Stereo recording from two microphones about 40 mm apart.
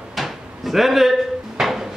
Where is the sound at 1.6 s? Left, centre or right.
Centre.